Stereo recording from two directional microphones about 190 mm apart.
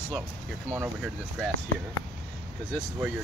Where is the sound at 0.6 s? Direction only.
10° right (ahead or behind).